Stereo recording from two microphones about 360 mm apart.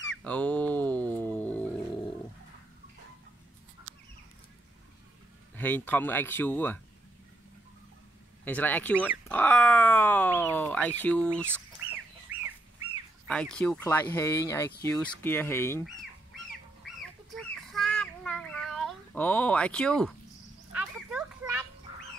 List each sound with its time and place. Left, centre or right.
0.2 s a sound: centre
3.9 s chicken: right
5.6 s speech: centre
8.5 s speech: centre
11.2 s chicken: centre
13.3 s speech: centre
16.8 s a sound: centre